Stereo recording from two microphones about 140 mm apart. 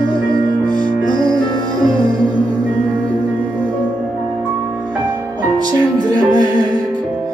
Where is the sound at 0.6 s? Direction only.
30° right (ahead or behind).